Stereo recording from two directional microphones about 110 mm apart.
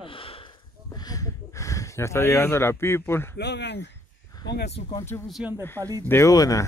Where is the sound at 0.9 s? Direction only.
35° left (ahead or behind).